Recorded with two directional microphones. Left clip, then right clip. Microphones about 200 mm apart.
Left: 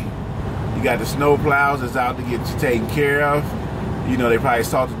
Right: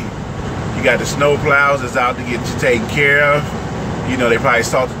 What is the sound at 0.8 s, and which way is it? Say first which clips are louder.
Speech: right 5 dB; 10° left (ahead or behind).